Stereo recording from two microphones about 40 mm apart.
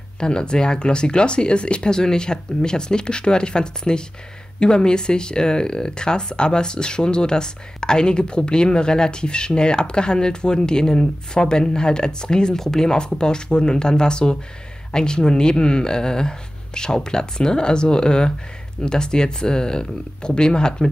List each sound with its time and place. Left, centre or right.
0.2 s speech: centre